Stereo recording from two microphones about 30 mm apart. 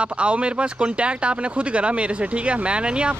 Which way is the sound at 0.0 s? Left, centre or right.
Right.